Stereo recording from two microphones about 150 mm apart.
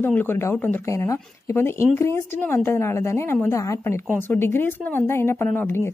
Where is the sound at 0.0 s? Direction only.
15° left (ahead or behind).